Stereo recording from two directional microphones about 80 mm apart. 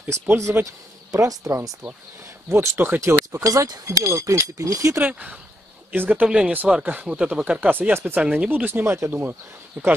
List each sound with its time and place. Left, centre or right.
0.5 s speech: right
1.1 s speech: right
2.5 s speech: right
3.3 s speech: right
5.0 s speech: centre